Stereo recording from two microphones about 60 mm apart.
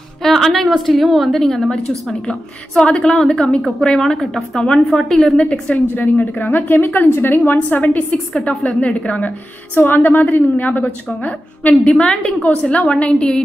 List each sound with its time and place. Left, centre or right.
0.2 s a woman's voice: centre
5.4 s a woman's voice: centre
5.9 s a woman's voice: left